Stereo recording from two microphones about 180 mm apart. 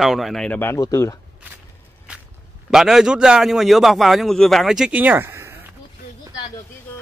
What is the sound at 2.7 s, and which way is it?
A man's voice, 5° right (ahead or behind).